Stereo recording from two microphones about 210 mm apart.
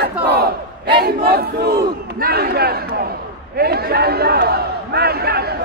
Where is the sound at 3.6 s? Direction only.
50° right (ahead or behind).